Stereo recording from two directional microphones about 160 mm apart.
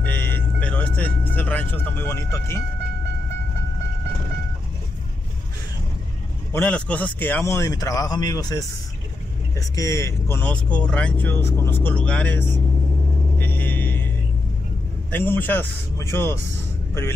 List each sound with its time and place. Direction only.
0.0 s vehicle: 10° left (ahead or behind)
6.5 s speech: 10° left (ahead or behind)
13.4 s vehicle: 10° left (ahead or behind)
15.0 s speech: 10° left (ahead or behind)